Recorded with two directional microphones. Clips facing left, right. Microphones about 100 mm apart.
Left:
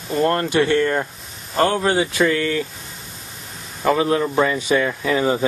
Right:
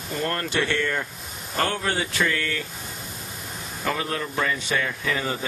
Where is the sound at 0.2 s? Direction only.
30° left (ahead or behind).